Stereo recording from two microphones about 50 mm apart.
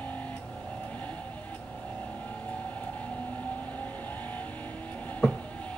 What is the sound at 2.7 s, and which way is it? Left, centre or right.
Vehicle, left.